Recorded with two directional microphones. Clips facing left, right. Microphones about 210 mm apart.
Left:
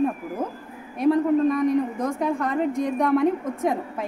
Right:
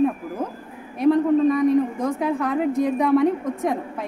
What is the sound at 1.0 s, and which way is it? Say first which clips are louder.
Speech: right 2 dB; centre (ahead or behind).